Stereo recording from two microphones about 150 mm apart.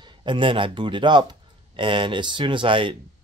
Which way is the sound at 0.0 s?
30° right (ahead or behind).